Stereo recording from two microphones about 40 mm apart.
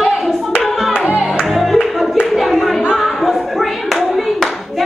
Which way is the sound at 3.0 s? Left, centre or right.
Centre.